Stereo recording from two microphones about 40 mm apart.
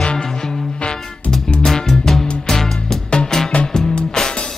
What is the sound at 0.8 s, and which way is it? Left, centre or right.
Music, left.